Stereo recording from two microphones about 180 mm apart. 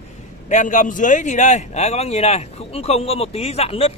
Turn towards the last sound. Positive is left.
turn(degrees=30)  # may be behind; listen again after turning